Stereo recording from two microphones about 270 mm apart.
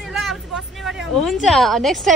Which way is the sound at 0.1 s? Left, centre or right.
Centre.